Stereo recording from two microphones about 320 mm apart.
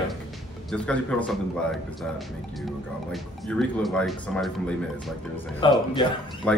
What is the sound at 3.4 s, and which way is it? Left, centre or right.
Speech, centre.